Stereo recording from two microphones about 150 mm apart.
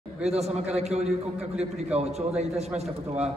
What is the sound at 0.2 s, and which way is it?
A man's voice, 45° right (ahead or behind).